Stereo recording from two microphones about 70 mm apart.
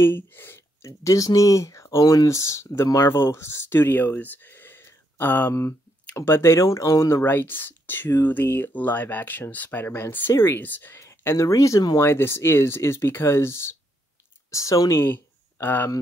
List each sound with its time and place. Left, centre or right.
0.0 s speech: left
0.8 s speech: left
5.5 s speech: left
11.0 s speech: left
12.0 s speech: left
14.5 s speech: left
15.0 s a sound: left